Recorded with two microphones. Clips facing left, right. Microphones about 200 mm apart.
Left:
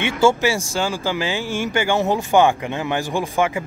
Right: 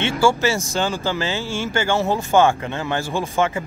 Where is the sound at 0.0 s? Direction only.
15° left (ahead or behind).